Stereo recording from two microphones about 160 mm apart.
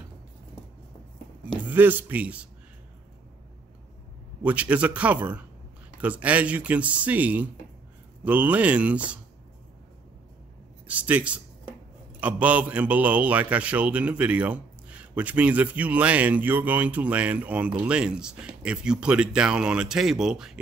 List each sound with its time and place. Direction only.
1.7 s a man's voice: 10° right (ahead or behind)
4.4 s a man's voice: 10° right (ahead or behind)
10.9 s a man's voice: 10° right (ahead or behind)